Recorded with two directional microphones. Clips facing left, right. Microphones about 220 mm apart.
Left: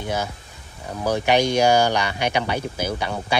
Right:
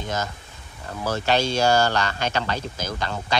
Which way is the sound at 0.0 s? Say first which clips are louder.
Left 2 dB; 10° left (ahead or behind).